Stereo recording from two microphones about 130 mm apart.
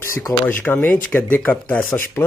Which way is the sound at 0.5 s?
15° left (ahead or behind).